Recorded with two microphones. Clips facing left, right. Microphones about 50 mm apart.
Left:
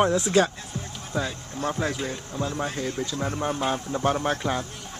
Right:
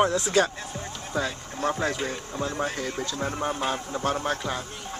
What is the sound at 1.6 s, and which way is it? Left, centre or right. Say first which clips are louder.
A man's voice: right 1 dB; centre.